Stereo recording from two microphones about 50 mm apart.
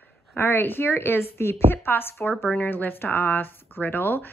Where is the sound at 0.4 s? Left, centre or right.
Left.